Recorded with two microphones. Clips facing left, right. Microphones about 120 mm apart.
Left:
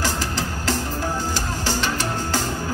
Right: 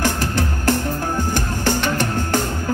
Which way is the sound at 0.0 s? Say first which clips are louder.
Right 4 dB; 55° right (ahead or behind).